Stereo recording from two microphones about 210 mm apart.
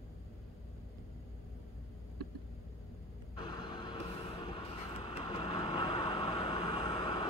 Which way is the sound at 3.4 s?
20° left (ahead or behind).